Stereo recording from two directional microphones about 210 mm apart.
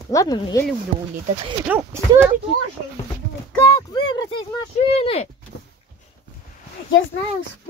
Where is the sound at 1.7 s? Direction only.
10° right (ahead or behind).